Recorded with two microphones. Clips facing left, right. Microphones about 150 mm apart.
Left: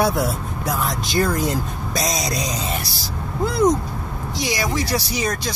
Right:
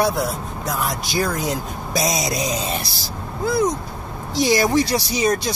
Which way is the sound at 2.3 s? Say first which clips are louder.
Right 2 dB; 25° right (ahead or behind).